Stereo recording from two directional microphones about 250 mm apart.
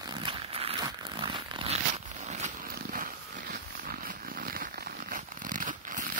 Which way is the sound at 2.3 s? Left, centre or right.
Right.